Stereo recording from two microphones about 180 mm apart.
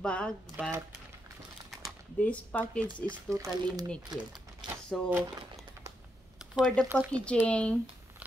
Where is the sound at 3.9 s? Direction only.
Centre (ahead or behind).